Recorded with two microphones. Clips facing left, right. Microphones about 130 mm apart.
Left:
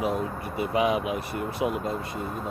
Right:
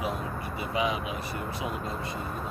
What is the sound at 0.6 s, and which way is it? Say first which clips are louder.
Speech: left 6 dB; 55° left (ahead or behind).